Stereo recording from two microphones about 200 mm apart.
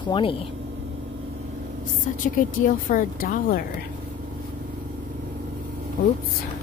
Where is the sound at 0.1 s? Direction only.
25° left (ahead or behind).